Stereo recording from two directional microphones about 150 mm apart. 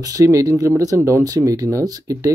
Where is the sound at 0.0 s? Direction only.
25° right (ahead or behind).